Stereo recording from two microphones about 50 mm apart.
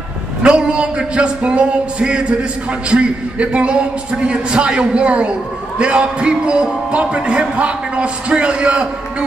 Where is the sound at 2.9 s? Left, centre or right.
Right.